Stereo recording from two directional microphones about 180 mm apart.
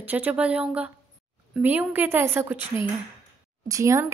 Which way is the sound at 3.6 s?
15° right (ahead or behind).